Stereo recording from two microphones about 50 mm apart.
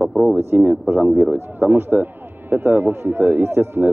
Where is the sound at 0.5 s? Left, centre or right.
Right.